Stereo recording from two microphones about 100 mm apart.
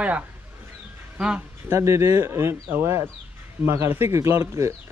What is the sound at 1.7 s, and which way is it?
Speech, 30° right (ahead or behind).